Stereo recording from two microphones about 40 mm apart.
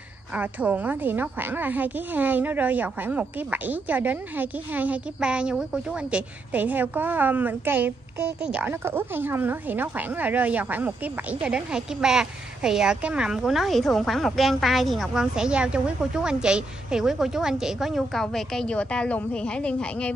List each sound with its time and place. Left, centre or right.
0.3 s a woman's voice: right
5.2 s speech: right
6.5 s a woman's voice: right
8.4 s speech: right
8.6 s a woman's voice: right
11.5 s speech: centre
13.4 s a woman's voice: centre
15.1 s a woman's voice: right
18.1 s a woman's voice: centre
18.7 s speech: left